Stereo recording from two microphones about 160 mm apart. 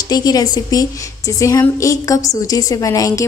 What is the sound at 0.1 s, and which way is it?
Speech, 25° left (ahead or behind).